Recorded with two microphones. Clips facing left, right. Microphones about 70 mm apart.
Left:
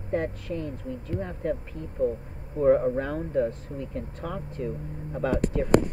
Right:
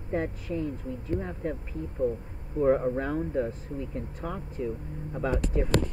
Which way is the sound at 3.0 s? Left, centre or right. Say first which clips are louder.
Left 2 dB; centre.